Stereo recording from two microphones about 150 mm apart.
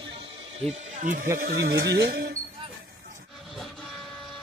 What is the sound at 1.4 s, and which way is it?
Speech, 90° right.